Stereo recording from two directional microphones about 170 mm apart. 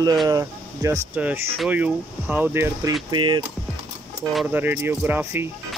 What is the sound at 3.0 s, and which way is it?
Speech, 30° right (ahead or behind).